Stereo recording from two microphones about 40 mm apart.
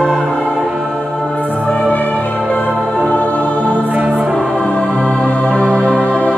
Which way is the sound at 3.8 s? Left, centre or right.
Right.